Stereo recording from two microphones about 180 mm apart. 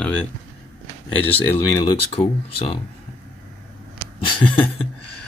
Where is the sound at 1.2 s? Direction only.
10° left (ahead or behind).